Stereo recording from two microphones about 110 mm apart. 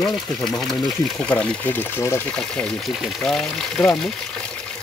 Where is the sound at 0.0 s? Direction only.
5° left (ahead or behind).